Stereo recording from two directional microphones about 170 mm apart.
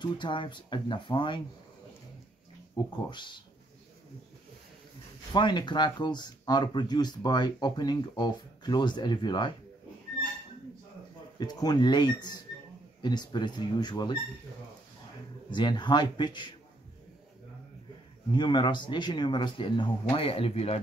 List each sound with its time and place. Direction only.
0.0 s speech: 30° left (ahead or behind)
2.8 s speech: 25° left (ahead or behind)
5.3 s speech: 25° left (ahead or behind)
11.3 s speech: 25° left (ahead or behind)
15.5 s speech: 25° left (ahead or behind)
18.3 s speech: 25° left (ahead or behind)